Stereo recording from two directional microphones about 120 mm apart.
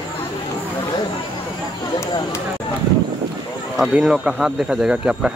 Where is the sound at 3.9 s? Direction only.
5° right (ahead or behind).